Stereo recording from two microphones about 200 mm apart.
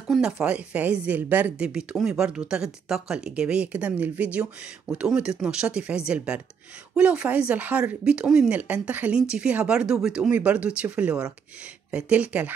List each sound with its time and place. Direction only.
0.1 s speech: 5° right (ahead or behind)